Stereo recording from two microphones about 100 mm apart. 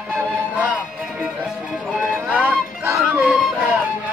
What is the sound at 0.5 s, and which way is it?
Music, 15° right (ahead or behind).